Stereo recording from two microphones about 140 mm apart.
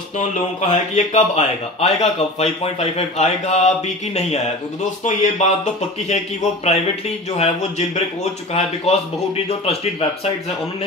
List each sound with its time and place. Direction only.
0.6 s a man's voice: 50° left (ahead or behind)
7.3 s a man's voice: 50° left (ahead or behind)